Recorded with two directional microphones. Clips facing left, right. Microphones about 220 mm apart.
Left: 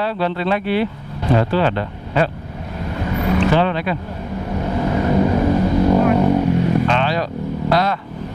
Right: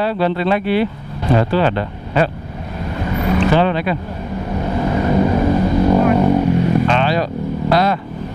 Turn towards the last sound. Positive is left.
turn(degrees=-10)  # may be behind; listen again after turning